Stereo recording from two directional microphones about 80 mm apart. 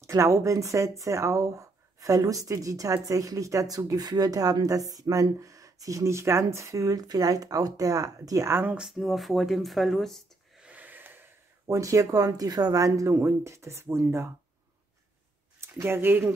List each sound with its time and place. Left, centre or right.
0.0 s speech: right
8.8 s speech: centre
10.6 s snort: centre
11.6 s speech: right
15.6 s speech: right